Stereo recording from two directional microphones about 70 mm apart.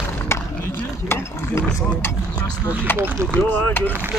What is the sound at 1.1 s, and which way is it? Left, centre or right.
Mechanisms, left.